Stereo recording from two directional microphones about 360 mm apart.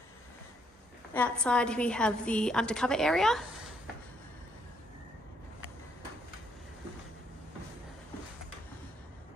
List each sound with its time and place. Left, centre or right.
1.1 s a woman's voice: centre